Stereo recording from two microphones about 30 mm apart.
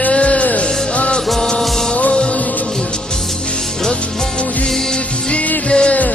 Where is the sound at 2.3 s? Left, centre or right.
Left.